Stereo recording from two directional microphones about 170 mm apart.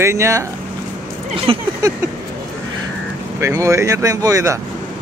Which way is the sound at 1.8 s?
20° right (ahead or behind).